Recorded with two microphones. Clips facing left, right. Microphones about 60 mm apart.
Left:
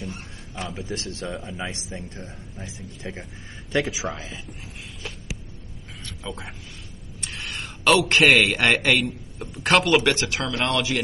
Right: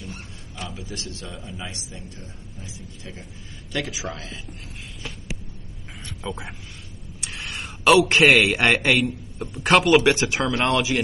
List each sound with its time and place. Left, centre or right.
0.6 s a man's voice: left
6.2 s a man's voice: centre
10.1 s speech: centre
10.4 s speech: centre